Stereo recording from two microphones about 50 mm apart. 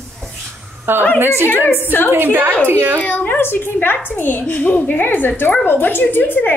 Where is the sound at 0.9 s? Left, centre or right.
Right.